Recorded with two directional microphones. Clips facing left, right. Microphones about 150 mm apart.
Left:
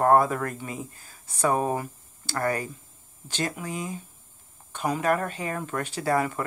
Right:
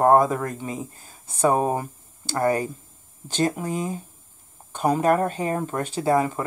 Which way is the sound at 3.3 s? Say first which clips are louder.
Right 7 dB; 35° right (ahead or behind).